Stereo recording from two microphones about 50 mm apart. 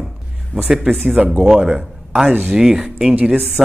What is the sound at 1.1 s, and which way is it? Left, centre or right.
Speech, centre.